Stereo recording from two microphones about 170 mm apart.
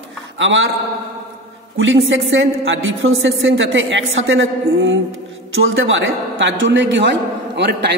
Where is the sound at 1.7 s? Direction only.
90° right.